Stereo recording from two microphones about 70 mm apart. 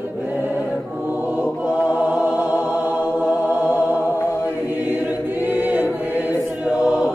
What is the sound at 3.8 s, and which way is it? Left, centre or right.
Music, left.